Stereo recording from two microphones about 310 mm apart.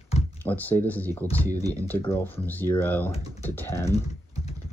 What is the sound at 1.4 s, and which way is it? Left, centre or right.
Speech, centre.